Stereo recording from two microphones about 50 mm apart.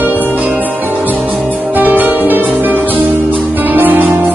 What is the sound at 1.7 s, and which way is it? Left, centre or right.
Music, right.